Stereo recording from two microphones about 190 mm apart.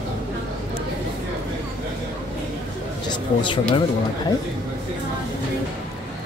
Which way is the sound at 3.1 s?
25° left (ahead or behind).